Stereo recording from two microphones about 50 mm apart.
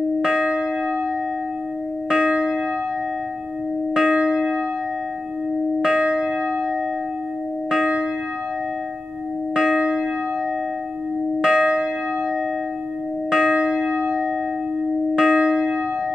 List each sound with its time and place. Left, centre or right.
0.2 s church bell: centre
2.0 s church bell: centre
3.9 s church bell: centre
5.8 s church bell: centre
7.7 s church bell: centre
9.6 s church bell: centre
11.4 s church bell: centre
13.3 s church bell: centre